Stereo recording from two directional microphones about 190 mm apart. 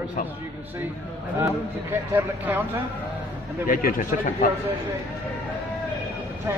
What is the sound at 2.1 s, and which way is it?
Speech, 10° right (ahead or behind).